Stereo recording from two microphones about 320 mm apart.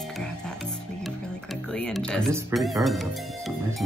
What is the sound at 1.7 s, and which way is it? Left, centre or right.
Music, centre.